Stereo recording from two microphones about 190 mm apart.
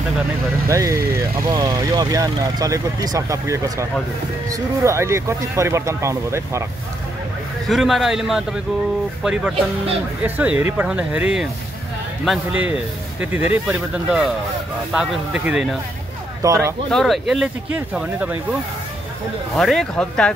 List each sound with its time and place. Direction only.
0.7 s speech: 15° right (ahead or behind)
7.6 s speech: centre (ahead or behind)
16.4 s speech: 20° right (ahead or behind)
16.9 s speech: centre (ahead or behind)
19.5 s speech: centre (ahead or behind)